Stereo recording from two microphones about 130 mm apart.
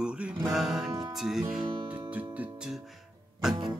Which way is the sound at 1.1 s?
Centre (ahead or behind).